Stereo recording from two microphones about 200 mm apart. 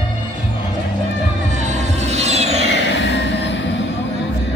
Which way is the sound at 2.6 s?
65° left (ahead or behind).